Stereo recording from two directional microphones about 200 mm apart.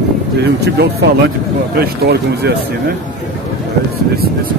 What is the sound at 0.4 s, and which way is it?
Speech, 55° right (ahead or behind).